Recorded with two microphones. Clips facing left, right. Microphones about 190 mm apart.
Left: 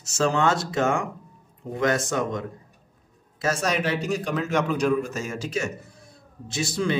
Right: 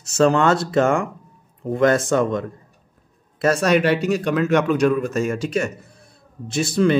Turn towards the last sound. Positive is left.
turn(degrees=-55)  # may be behind; listen again after turning